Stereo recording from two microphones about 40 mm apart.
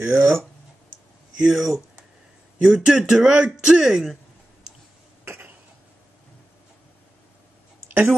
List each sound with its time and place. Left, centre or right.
0.0 s speech: right
1.4 s speech: centre
5.2 s cough: right